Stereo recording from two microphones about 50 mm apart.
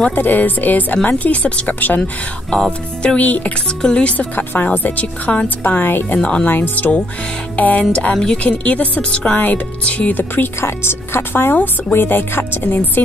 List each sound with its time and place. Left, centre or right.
0.1 s speech: left
2.5 s music: centre
3.2 s speech: left
3.8 s music: centre
4.2 s speech: left
6.1 s a woman's voice: left
6.4 s speech: left
7.9 s music: centre
8.5 s a woman's voice: left
10.1 s speech: left
10.6 s speech: left